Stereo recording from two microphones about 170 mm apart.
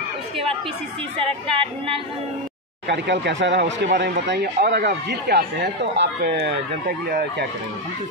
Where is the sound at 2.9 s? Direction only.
90° right; by 7.4 s 70° right (ahead or behind).